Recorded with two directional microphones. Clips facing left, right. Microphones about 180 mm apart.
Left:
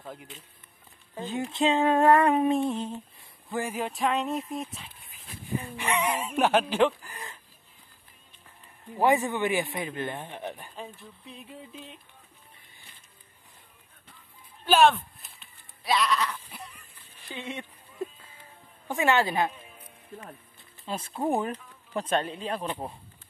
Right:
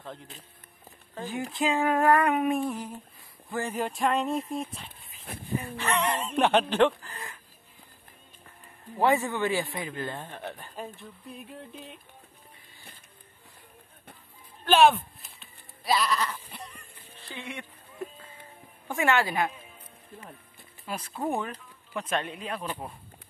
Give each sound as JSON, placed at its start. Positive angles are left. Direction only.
{"t": 0.0, "sound": "speech", "side_deg": 10}
{"t": 1.1, "sound": "speech", "side_deg": 20}
{"t": 1.5, "sound": "a sound", "side_deg": 25}
{"t": 3.5, "sound": "speech", "side_deg": 10}
{"t": 8.9, "sound": "speech", "side_deg": 15}
{"t": 10.8, "sound": "speech", "side_deg": 0}
{"t": 14.9, "sound": "a sound", "side_deg": 0}
{"t": 15.8, "sound": "sheep", "side_deg": 0}
{"t": 17.2, "sound": "speech", "side_deg": 20}
{"t": 18.9, "sound": "a sound", "side_deg": 20}
{"t": 20.8, "sound": "speech", "side_deg": 25}